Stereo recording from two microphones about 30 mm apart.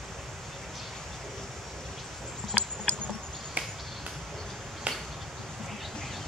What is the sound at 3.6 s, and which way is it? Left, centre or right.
Finger snapping, right.